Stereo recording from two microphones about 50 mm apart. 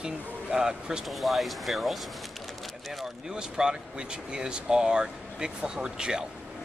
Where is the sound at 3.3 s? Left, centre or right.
Centre.